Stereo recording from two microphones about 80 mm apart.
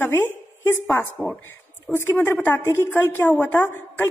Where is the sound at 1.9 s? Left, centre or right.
Left.